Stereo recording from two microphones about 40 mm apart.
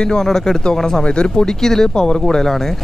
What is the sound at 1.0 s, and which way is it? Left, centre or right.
Speech, left.